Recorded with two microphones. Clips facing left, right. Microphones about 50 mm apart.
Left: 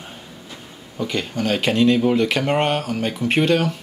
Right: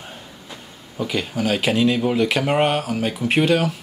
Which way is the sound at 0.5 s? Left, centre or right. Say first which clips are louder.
Even; centre.